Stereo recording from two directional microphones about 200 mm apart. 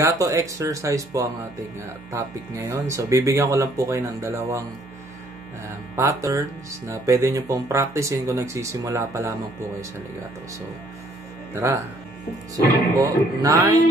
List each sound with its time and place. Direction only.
0.0 s speech: 15° right (ahead or behind)
5.9 s speech: 15° right (ahead or behind)
11.5 s speech: 15° right (ahead or behind)
12.9 s speech: 15° right (ahead or behind)